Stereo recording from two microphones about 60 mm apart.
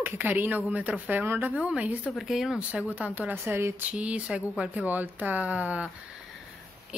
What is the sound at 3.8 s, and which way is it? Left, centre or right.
Speech, right.